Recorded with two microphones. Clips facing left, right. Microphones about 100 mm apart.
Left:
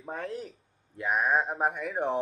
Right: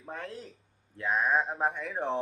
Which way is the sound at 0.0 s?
20° left (ahead or behind).